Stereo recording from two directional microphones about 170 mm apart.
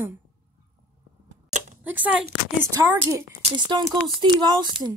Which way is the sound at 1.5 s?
50° right (ahead or behind).